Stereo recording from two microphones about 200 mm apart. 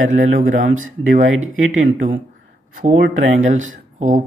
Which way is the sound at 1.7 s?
40° right (ahead or behind).